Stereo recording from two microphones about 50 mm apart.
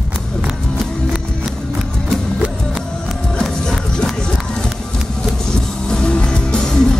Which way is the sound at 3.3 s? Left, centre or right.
Centre.